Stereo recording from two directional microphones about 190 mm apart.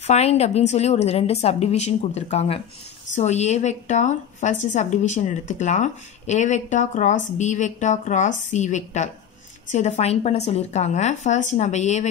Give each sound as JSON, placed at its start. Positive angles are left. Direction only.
{"t": 0.0, "sound": "a woman's voice", "side_deg": 35}